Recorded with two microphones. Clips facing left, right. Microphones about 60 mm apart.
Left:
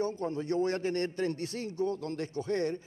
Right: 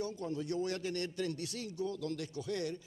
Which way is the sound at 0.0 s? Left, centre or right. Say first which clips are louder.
Left 5 dB; left.